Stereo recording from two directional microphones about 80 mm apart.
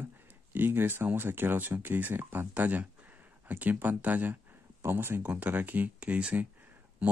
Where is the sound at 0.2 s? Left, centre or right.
Right.